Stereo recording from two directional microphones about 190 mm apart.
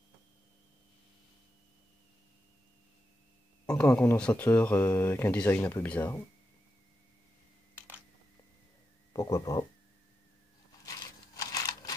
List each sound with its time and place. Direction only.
3.7 s speech: 10° left (ahead or behind)
9.1 s speech: 15° left (ahead or behind)
10.9 s a sound: 20° left (ahead or behind)